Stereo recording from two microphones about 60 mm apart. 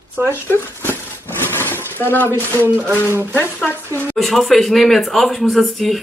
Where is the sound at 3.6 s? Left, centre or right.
Left.